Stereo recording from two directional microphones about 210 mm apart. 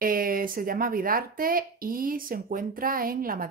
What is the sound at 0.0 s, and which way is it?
Speech, 45° right (ahead or behind).